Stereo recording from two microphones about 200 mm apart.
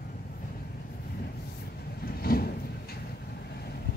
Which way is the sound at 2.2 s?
50° left (ahead or behind).